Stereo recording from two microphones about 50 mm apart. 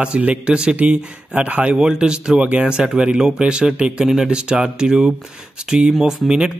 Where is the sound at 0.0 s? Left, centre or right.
Right.